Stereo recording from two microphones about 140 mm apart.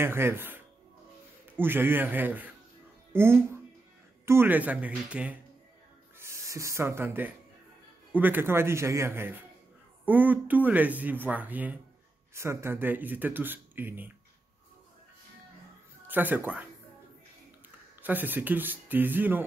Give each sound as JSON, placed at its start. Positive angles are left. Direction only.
{"t": 0.0, "sound": "speech", "side_deg": -15}
{"t": 6.1, "sound": "speech", "side_deg": -20}
{"t": 16.1, "sound": "speech", "side_deg": -15}
{"t": 18.0, "sound": "speech", "side_deg": -15}